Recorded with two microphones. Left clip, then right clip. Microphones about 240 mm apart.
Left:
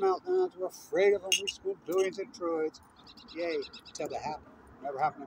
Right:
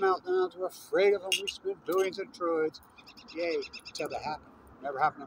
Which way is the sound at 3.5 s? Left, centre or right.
Right.